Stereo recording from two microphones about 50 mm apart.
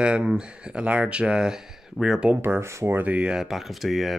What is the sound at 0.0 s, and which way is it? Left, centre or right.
Speech, right.